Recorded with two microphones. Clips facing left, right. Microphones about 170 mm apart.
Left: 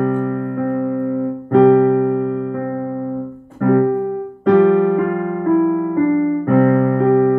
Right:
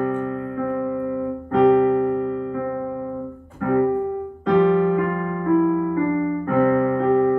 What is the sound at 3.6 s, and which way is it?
Music, 45° left (ahead or behind).